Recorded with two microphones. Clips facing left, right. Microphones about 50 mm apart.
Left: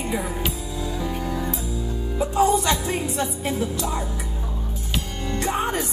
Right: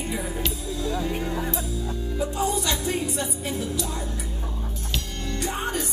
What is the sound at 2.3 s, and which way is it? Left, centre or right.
Music, left.